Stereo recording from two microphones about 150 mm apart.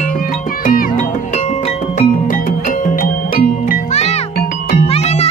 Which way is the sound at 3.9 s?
50° left (ahead or behind).